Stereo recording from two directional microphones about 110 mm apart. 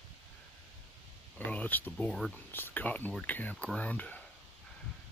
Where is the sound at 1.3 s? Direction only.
15° left (ahead or behind).